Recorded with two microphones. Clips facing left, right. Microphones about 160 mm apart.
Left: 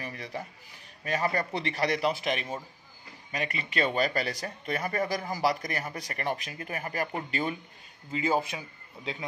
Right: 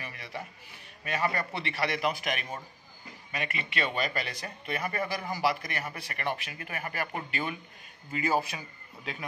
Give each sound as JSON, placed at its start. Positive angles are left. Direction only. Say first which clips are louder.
{"t": 0.0, "sound": "a sound", "louder": "left 4 dB", "side_deg": 35}
{"t": 1.0, "sound": "speech", "louder": "left 2 dB", "side_deg": 35}
{"t": 3.3, "sound": "speech", "louder": "left 2 dB", "side_deg": 35}
{"t": 8.1, "sound": "a man's voice", "louder": "left 1 dB", "side_deg": 20}